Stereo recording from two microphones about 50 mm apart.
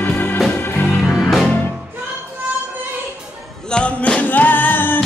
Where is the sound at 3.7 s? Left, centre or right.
Centre.